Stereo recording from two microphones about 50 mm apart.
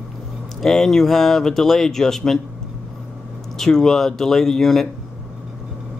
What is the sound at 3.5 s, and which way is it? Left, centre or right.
Speech, centre.